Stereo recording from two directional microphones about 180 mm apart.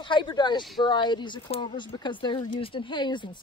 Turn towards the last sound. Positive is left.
turn(degrees=25)  # may be behind; listen again after turning